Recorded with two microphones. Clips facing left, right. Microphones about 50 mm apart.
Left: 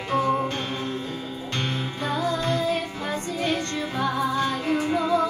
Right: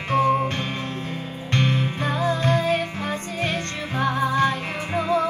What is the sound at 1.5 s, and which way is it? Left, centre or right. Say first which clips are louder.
Music: right 7 dB; right.